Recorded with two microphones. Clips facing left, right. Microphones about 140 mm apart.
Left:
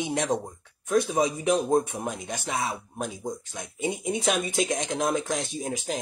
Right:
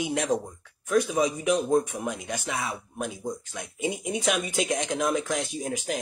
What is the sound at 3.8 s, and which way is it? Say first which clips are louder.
Speech: left 1 dB; 30° left (ahead or behind).